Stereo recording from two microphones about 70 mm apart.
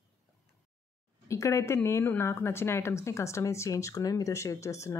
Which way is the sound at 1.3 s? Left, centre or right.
Left.